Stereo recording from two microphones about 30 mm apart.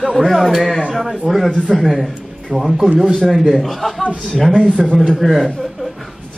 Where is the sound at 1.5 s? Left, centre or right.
Centre.